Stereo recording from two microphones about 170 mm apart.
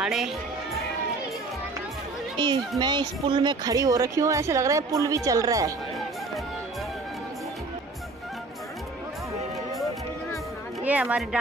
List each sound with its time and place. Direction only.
0.0 s speech: 5° right (ahead or behind)
2.3 s a child's voice: 25° right (ahead or behind)
10.8 s a woman's voice: 10° right (ahead or behind)